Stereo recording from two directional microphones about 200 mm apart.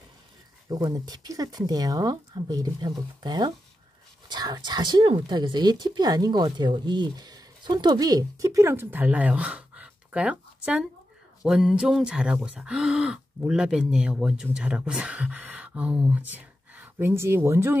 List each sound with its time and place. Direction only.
0.7 s speech: 20° right (ahead or behind)